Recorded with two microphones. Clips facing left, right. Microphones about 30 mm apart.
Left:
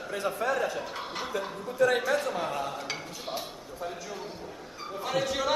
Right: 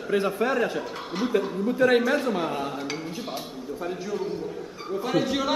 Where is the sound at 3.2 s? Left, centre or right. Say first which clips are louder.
Right 3 dB; centre.